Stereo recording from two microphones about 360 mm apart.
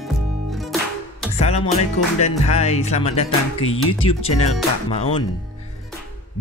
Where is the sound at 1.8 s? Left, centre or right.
Centre.